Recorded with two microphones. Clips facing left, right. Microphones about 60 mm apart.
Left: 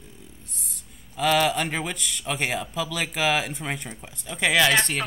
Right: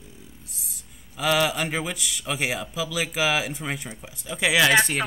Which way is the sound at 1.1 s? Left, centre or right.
Centre.